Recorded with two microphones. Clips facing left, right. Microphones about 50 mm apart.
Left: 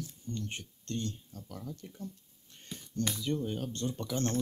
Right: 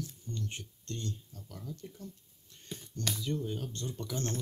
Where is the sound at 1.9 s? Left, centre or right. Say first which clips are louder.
Left 3 dB; left.